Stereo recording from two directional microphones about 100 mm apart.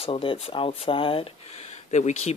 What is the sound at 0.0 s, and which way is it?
Speech, 65° left (ahead or behind).